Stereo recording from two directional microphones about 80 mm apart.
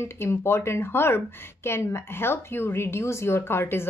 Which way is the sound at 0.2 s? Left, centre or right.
Left.